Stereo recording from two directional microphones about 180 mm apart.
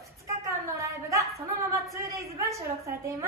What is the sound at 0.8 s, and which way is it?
Speech, 15° right (ahead or behind).